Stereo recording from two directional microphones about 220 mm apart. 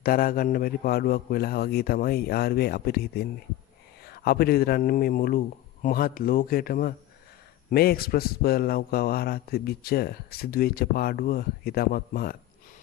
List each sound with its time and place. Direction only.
0.0 s speech: 40° left (ahead or behind)